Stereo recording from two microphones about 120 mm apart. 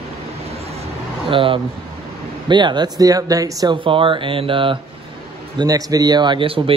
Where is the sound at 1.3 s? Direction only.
45° right (ahead or behind); by 3.8 s 30° right (ahead or behind).